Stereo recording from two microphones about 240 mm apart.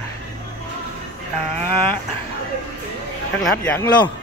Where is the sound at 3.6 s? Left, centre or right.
Centre.